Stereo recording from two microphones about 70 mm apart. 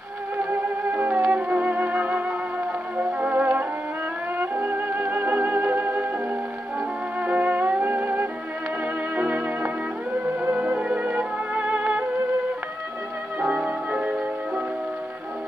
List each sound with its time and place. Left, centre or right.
0.4 s music: right
7.2 s music: right
13.4 s music: right